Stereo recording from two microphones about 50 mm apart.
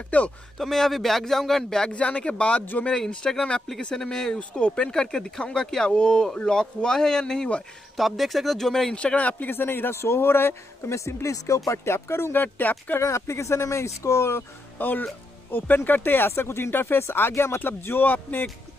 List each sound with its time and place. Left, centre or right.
0.1 s speech: left
0.6 s speech: centre
1.9 s speech: left
7.9 s speech: centre
8.9 s speech: left
9.5 s speech: left
10.9 s speech: left
13.1 s speech: left
14.8 s speech: left
17.3 s speech: left
17.6 s speech: left